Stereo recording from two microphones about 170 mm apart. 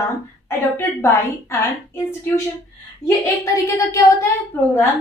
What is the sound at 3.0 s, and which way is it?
Speech, 20° left (ahead or behind).